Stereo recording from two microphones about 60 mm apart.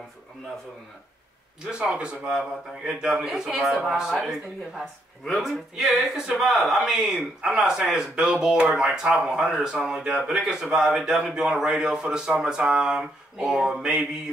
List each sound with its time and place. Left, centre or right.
1.7 s speech: centre